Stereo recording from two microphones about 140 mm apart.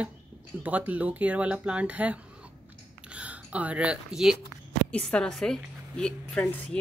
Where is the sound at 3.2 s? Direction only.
10° right (ahead or behind); by 6.8 s 10° left (ahead or behind).